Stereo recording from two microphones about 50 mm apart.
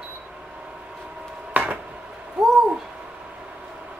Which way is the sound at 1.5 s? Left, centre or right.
Right.